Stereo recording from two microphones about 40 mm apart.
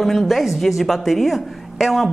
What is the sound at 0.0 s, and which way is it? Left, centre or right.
A woman's voice, centre.